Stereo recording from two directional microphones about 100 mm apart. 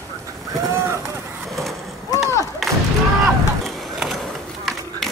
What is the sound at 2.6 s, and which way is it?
Thump, centre (ahead or behind).